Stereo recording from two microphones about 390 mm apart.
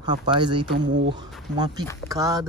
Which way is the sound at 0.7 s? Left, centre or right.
Right.